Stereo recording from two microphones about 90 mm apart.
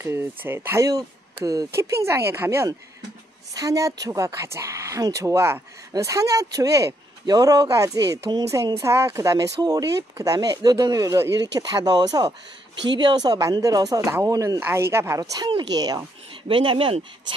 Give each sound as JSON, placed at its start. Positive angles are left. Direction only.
{"t": 0.0, "sound": "speech", "side_deg": -25}
{"t": 0.8, "sound": "speech", "side_deg": -40}
{"t": 3.5, "sound": "speech", "side_deg": -40}
{"t": 15.1, "sound": "speech", "side_deg": -55}
{"t": 16.4, "sound": "speech", "side_deg": -70}